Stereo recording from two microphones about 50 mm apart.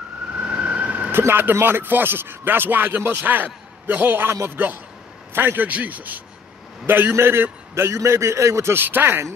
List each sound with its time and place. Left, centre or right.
0.4 s emergency vehicle: right
1.1 s a man's voice: right
5.7 s a man's voice: right
7.2 s a man's voice: right
7.7 s a man's voice: right
8.7 s a man's voice: right